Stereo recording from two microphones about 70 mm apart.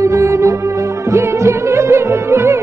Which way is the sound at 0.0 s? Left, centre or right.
Right.